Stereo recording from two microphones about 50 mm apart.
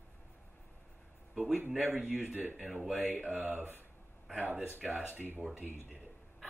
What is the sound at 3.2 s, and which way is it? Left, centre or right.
Speech, right.